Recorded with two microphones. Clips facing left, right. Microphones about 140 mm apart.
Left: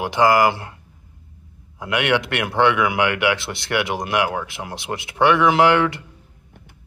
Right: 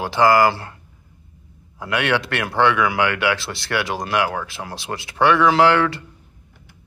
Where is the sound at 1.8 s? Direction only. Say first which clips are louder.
Left 1 dB; 20° left (ahead or behind).